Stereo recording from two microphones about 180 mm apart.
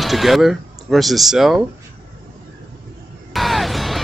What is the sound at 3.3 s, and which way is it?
Music, centre (ahead or behind).